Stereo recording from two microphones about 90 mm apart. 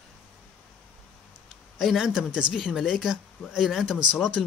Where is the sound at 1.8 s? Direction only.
Centre (ahead or behind).